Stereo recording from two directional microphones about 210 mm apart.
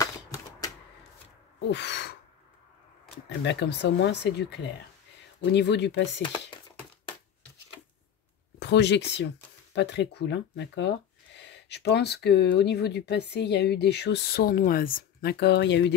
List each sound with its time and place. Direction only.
1.7 s owl: 55° left (ahead or behind)
3.4 s speech: 55° left (ahead or behind)
8.5 s speech: 55° left (ahead or behind)